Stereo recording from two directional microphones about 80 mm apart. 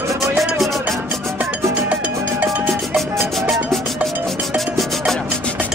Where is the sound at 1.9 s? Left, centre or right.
Centre.